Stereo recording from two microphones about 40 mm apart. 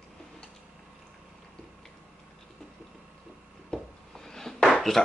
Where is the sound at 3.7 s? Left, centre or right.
Centre.